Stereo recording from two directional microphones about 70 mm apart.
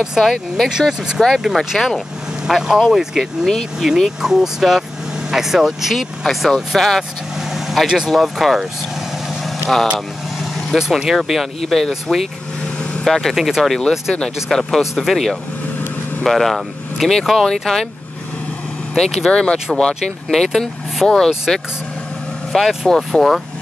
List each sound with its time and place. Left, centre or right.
0.0 s speech: centre
9.9 s vehicle: centre
10.8 s speech: centre
18.9 s speech: centre
22.5 s speech: centre